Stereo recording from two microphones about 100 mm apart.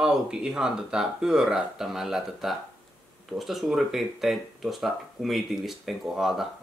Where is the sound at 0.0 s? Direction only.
5° right (ahead or behind).